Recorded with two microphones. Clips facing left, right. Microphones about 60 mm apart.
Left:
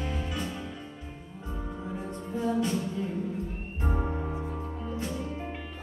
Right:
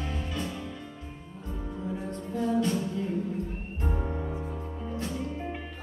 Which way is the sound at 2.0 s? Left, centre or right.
Centre.